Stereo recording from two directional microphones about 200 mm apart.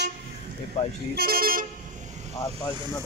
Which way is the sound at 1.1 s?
50° right (ahead or behind).